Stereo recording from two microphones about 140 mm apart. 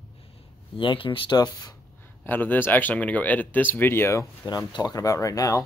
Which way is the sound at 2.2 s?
15° left (ahead or behind).